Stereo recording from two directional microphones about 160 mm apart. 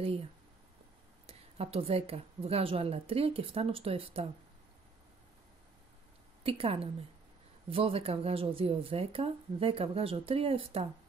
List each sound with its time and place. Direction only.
1.2 s speech: 40° right (ahead or behind)
6.4 s speech: 35° right (ahead or behind)